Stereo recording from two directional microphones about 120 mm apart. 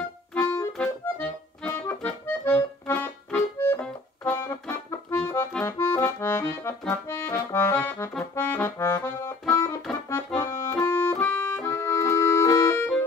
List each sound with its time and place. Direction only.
0.3 s music: 10° left (ahead or behind)
0.7 s accordion: 10° left (ahead or behind)